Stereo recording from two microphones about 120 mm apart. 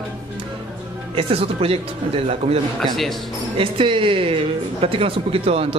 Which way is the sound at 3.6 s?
45° right (ahead or behind).